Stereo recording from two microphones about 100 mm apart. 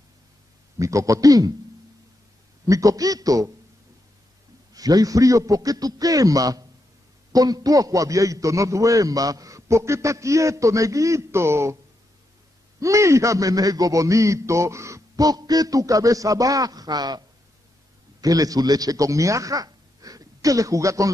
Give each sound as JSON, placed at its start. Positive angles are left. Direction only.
{"t": 0.7, "sound": "a man's voice", "side_deg": -30}
{"t": 2.6, "sound": "a man's voice", "side_deg": -35}
{"t": 4.7, "sound": "a man's voice", "side_deg": -40}
{"t": 12.8, "sound": "a man's voice", "side_deg": -30}
{"t": 18.2, "sound": "a man's voice", "side_deg": -40}